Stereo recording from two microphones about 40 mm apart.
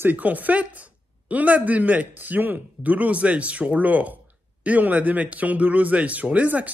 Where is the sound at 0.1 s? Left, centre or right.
Right.